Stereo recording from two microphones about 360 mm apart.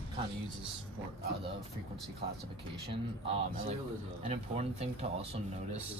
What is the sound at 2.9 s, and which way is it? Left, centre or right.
Speech, centre.